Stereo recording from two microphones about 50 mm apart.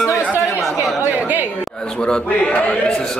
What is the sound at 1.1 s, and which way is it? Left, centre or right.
Chatter, right.